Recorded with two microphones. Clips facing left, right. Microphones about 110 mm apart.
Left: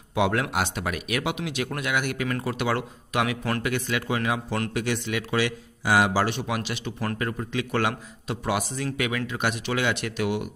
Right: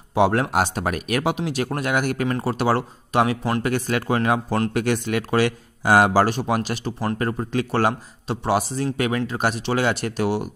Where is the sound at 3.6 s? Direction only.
40° right (ahead or behind).